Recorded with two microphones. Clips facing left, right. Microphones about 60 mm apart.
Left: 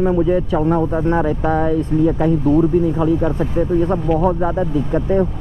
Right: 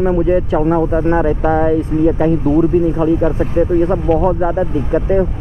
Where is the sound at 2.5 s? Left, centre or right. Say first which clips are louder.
Right 2 dB; centre.